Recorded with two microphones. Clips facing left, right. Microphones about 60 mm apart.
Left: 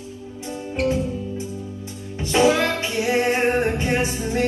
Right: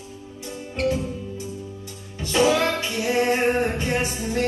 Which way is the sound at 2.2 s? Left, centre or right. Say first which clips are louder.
Left 2 dB; left.